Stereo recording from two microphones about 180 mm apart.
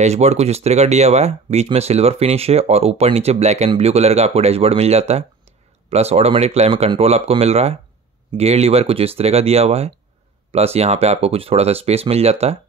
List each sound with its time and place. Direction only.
0.0 s speech: 40° right (ahead or behind)